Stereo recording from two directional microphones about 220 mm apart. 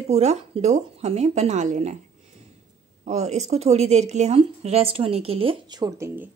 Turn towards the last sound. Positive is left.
turn(degrees=-15)  # may be behind; listen again after turning